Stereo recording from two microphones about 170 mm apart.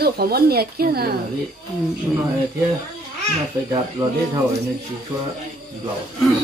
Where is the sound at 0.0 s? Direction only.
65° right (ahead or behind).